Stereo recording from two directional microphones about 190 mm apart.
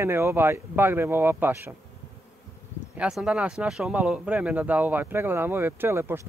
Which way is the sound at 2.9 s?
5° right (ahead or behind).